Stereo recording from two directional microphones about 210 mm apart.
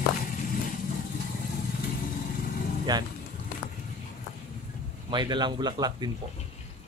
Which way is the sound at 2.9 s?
20° right (ahead or behind).